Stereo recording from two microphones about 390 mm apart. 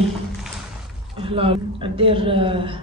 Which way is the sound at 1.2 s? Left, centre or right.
Centre.